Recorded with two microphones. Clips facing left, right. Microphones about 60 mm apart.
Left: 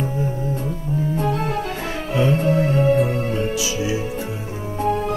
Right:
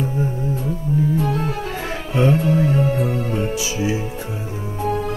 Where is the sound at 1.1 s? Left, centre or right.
Left.